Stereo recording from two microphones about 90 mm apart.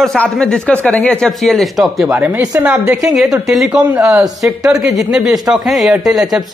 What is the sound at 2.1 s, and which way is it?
Speech, 20° right (ahead or behind).